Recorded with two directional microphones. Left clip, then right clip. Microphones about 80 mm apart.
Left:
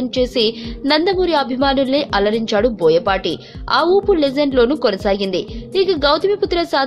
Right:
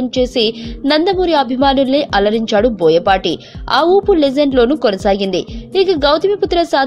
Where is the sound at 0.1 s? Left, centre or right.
Right.